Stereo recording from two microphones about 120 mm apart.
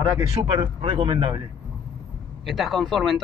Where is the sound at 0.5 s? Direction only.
55° right (ahead or behind).